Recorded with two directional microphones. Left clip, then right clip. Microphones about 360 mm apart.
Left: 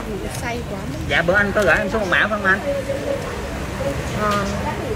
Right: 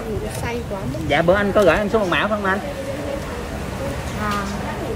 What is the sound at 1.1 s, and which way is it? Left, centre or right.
Speech, right.